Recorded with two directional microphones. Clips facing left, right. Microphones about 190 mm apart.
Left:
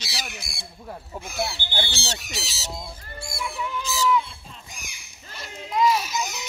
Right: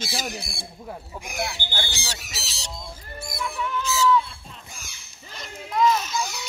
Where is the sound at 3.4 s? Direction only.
15° left (ahead or behind).